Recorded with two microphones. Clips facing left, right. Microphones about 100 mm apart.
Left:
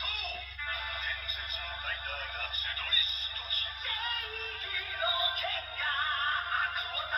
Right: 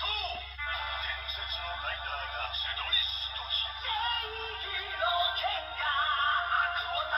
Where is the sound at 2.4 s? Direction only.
50° right (ahead or behind).